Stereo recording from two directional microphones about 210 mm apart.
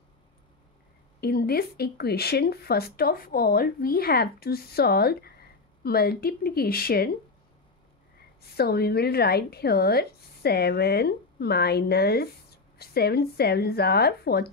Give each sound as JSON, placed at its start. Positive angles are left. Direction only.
{"t": 1.2, "sound": "a woman's voice", "side_deg": 50}
{"t": 8.4, "sound": "a woman's voice", "side_deg": 50}